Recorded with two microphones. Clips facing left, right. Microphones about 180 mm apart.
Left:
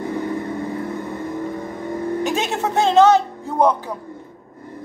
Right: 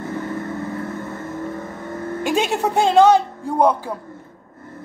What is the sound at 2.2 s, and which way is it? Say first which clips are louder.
Speech: right 2 dB; 15° right (ahead or behind).